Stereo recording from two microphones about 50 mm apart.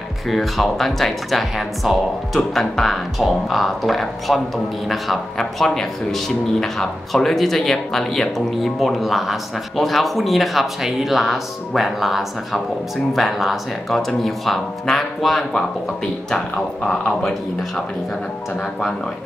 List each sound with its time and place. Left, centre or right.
0.3 s speech: centre
16.3 s speech: centre